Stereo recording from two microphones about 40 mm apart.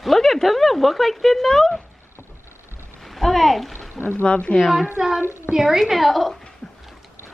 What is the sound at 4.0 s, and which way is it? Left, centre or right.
Speech, left.